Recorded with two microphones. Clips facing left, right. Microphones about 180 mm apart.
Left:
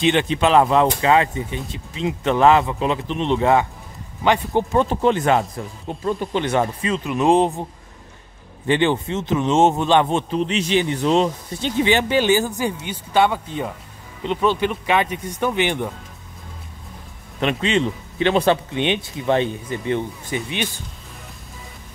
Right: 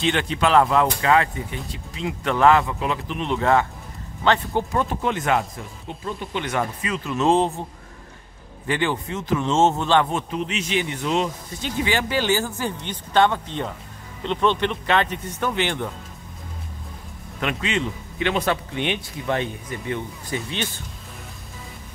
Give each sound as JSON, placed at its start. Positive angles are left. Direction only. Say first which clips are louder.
{"t": 0.0, "sound": "a man's voice", "louder": "left 4 dB", "side_deg": 20}
{"t": 4.7, "sound": "a man's voice", "louder": "left 9 dB", "side_deg": 30}
{"t": 8.6, "sound": "a man's voice", "louder": "left 5 dB", "side_deg": 25}
{"t": 17.4, "sound": "a man's voice", "louder": "left 5 dB", "side_deg": 25}